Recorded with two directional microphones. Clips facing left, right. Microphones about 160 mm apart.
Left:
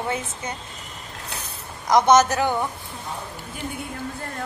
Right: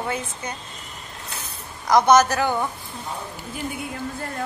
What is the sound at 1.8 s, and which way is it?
Speech, 20° left (ahead or behind).